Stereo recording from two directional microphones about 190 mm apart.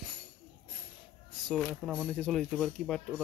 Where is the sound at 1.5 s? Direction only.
Centre (ahead or behind).